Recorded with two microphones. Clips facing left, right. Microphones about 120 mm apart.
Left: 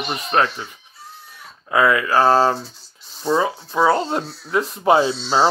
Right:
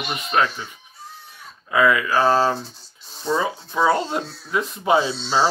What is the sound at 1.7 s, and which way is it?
Speech, 30° left (ahead or behind).